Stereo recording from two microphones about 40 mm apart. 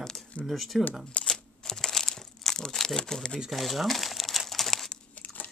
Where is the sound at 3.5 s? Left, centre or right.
Centre.